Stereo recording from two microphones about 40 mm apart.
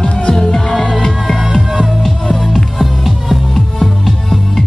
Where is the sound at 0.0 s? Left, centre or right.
Centre.